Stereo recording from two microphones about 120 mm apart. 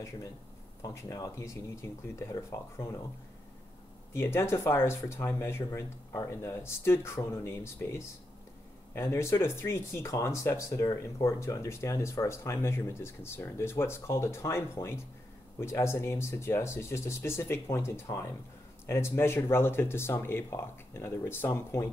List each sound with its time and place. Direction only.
0.8 s speech: 25° left (ahead or behind)
4.1 s speech: 20° left (ahead or behind)